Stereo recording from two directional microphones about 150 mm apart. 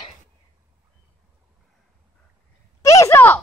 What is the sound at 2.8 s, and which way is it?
Speech, 20° left (ahead or behind).